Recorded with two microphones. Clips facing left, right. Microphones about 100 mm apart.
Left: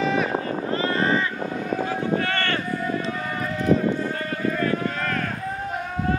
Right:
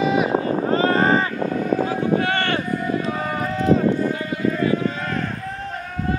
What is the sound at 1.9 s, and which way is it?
Run, 20° right (ahead or behind).